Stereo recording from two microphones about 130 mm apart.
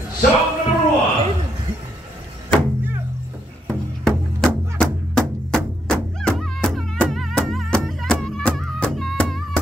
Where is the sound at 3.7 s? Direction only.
5° left (ahead or behind).